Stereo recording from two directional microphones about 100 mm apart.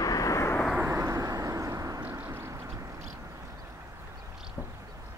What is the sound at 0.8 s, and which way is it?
Vehicle, 30° right (ahead or behind).